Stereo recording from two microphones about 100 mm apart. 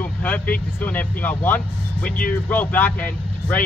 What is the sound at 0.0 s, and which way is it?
Speech, 15° left (ahead or behind).